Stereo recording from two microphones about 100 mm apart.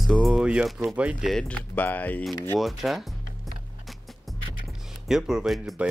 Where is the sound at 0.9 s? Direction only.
15° right (ahead or behind).